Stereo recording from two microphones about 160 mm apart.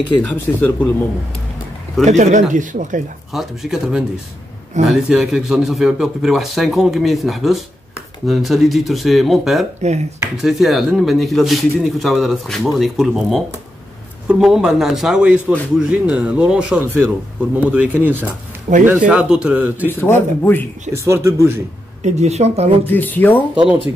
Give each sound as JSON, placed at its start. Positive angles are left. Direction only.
{"t": 0.2, "sound": "speech", "side_deg": 5}
{"t": 2.0, "sound": "speech", "side_deg": -50}
{"t": 3.3, "sound": "speech", "side_deg": 0}
{"t": 9.8, "sound": "speech", "side_deg": -45}
{"t": 10.3, "sound": "speech", "side_deg": 0}
{"t": 18.7, "sound": "speech", "side_deg": -45}
{"t": 19.0, "sound": "speech", "side_deg": -5}
{"t": 19.9, "sound": "speech", "side_deg": 15}
{"t": 20.9, "sound": "speech", "side_deg": -20}
{"t": 22.0, "sound": "speech", "side_deg": -45}
{"t": 22.8, "sound": "speech", "side_deg": 10}
{"t": 23.5, "sound": "speech", "side_deg": -10}